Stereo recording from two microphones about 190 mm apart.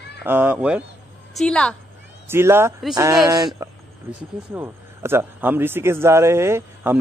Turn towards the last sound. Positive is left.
turn(degrees=-10)  # may be behind; listen again after turning